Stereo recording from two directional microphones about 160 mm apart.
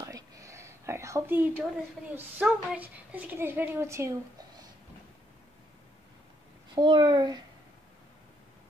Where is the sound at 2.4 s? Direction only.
10° right (ahead or behind).